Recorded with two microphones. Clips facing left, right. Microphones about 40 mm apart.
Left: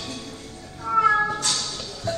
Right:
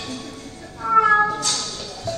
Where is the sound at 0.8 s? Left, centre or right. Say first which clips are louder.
Right 5 dB; right.